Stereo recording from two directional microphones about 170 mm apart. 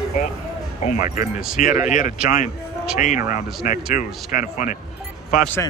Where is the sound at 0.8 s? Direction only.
45° left (ahead or behind).